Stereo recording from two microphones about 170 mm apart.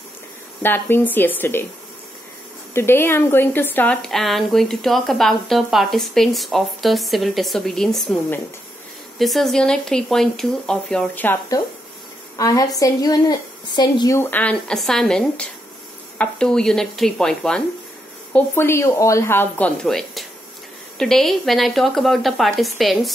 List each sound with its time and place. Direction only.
0.6 s a woman's voice: 10° left (ahead or behind)
2.7 s speech: 15° left (ahead or behind)
9.2 s a woman's voice: centre (ahead or behind)
18.3 s a woman's voice: 15° left (ahead or behind)